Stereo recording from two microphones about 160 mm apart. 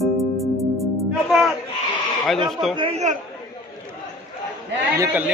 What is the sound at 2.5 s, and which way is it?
Speech, centre (ahead or behind).